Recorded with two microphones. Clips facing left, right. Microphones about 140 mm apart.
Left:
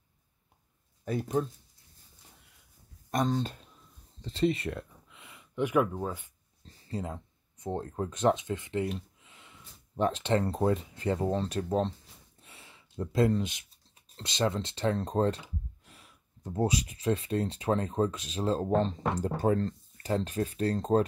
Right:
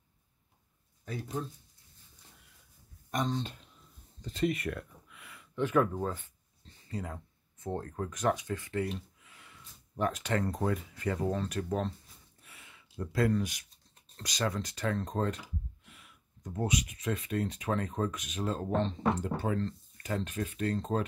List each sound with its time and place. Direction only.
1.0 s speech: 55° left (ahead or behind)
3.1 s speech: 40° left (ahead or behind)
4.2 s speech: 30° left (ahead or behind); by 6.3 s 10° left (ahead or behind)
6.6 s speech: 30° left (ahead or behind)
12.4 s a sound: 30° left (ahead or behind)
14.1 s speech: 25° left (ahead or behind)